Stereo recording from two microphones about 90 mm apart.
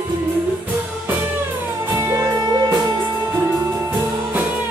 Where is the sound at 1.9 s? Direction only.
30° right (ahead or behind).